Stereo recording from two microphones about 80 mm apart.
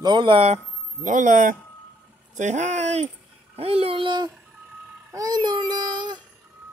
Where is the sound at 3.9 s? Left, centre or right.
Right.